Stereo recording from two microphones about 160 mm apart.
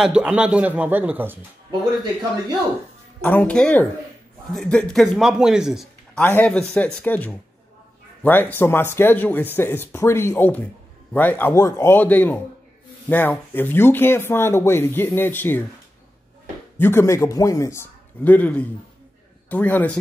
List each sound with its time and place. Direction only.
0.0 s speech: 5° right (ahead or behind)
3.2 s speech: 10° left (ahead or behind)
6.1 s speech: 10° left (ahead or behind)
16.7 s speech: 15° left (ahead or behind)